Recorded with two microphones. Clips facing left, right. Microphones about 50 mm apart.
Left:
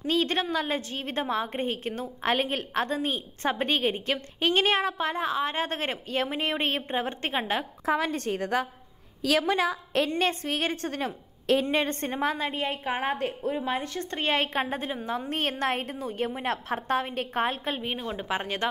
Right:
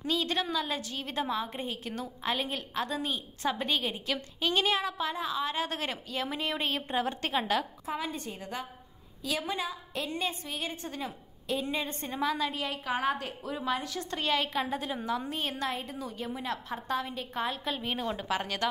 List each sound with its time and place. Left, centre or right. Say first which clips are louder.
0.0 s a woman's voice: left 4 dB; left
7.8 s a woman's voice: left 8 dB; left
15.2 s a woman's voice: left 5 dB; left
17.8 s a woman's voice: left 1 dB; centre
18.3 s speech: left 3 dB; left